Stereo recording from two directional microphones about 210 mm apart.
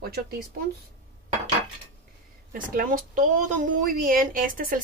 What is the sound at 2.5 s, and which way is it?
Speech, 45° right (ahead or behind).